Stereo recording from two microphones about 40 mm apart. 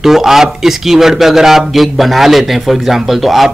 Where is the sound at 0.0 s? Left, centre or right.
Centre.